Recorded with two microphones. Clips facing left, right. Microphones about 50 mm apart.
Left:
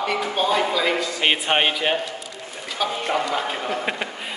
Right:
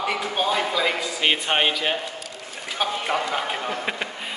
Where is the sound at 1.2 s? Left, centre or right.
Centre.